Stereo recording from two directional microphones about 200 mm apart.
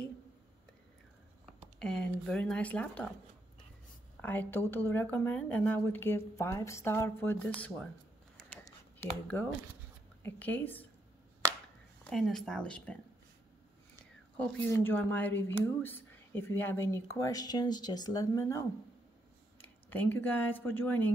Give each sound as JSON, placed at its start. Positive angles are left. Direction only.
{"t": 1.8, "sound": "speech", "side_deg": 5}
{"t": 4.2, "sound": "speech", "side_deg": 10}
{"t": 8.4, "sound": "a sound", "side_deg": 0}
{"t": 9.0, "sound": "speech", "side_deg": 10}
{"t": 10.2, "sound": "speech", "side_deg": 10}
{"t": 12.0, "sound": "speech", "side_deg": 0}
{"t": 14.3, "sound": "speech", "side_deg": 5}
{"t": 19.6, "sound": "speech", "side_deg": 10}